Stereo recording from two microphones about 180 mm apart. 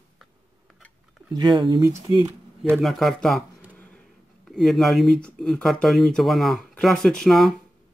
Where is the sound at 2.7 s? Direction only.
Centre (ahead or behind).